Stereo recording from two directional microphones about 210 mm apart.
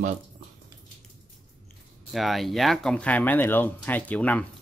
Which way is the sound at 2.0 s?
Centre (ahead or behind).